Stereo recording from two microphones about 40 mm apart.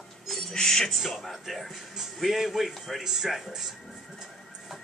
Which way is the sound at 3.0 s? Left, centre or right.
Centre.